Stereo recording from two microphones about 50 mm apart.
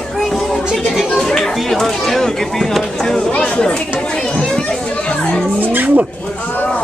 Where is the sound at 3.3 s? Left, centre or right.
Left.